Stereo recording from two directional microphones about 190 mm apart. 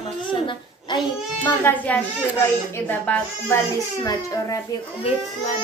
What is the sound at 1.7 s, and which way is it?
Speech, 10° left (ahead or behind).